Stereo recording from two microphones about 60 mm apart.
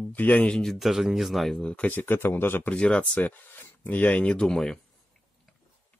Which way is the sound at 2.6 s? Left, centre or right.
Centre.